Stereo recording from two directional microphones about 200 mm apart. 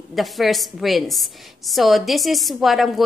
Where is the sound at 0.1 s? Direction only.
Centre (ahead or behind).